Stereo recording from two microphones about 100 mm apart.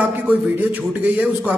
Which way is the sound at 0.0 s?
15° right (ahead or behind).